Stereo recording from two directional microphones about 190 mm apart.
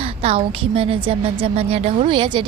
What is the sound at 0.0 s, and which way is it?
A woman's voice, 30° right (ahead or behind).